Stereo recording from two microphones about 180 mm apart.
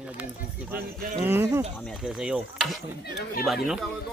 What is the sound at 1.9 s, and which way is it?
Speech, centre (ahead or behind).